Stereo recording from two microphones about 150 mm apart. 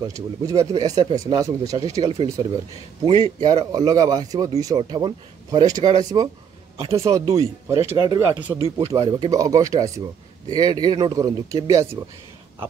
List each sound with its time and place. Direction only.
0.0 s speech: 20° right (ahead or behind)